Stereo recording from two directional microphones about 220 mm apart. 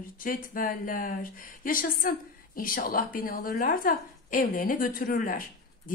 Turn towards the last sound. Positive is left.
turn(degrees=40)  # may be behind; listen again after turning